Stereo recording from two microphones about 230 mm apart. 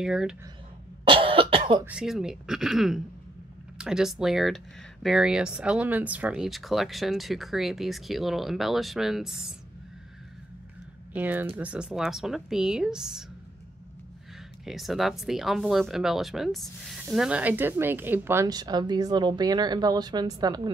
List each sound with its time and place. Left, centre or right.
0.0 s speech: centre
1.0 s cough: right
1.9 s speech: centre
11.1 s speech: centre
14.6 s speech: centre